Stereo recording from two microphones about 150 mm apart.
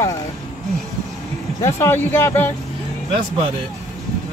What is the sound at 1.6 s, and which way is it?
Speech, 15° left (ahead or behind).